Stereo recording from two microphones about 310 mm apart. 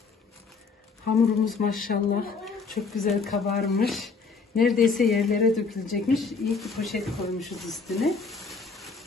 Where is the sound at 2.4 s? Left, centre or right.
Centre.